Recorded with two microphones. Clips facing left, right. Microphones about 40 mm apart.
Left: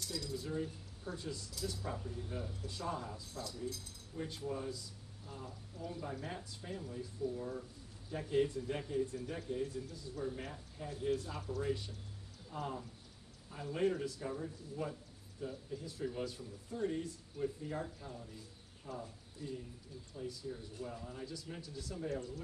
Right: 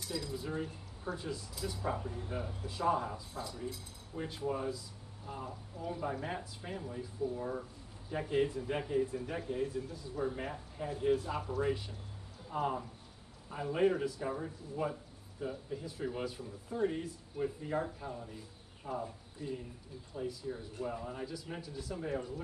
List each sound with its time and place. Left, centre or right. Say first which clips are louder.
0.0 s speech: right 3 dB; centre
12.4 s speech: right 7 dB; right
21.5 s speech: right 3 dB; centre